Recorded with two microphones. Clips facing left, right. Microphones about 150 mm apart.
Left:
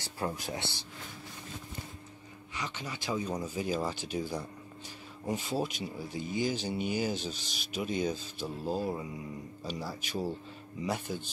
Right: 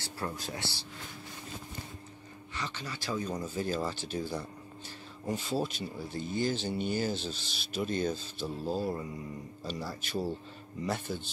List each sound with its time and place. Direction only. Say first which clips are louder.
0.0 s speech: left 2 dB; 15° left (ahead or behind)
2.5 s speech: even; 15° left (ahead or behind)